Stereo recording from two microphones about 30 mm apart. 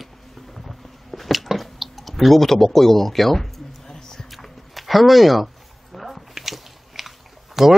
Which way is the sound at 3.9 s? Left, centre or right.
Centre.